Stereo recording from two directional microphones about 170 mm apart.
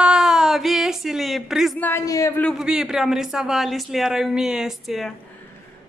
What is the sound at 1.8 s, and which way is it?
Speech, 15° left (ahead or behind).